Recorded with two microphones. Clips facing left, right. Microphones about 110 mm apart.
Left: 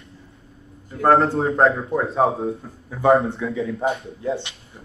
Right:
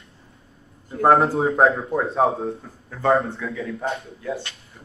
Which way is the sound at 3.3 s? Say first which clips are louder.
Left 4 dB; 25° left (ahead or behind).